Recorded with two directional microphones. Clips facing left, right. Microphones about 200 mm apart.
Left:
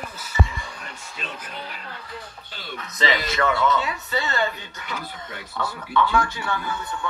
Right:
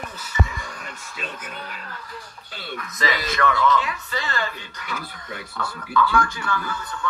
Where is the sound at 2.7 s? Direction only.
25° left (ahead or behind).